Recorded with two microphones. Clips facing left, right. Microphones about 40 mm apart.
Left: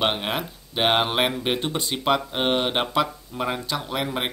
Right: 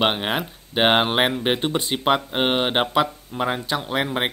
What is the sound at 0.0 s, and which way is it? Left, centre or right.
Speech, right.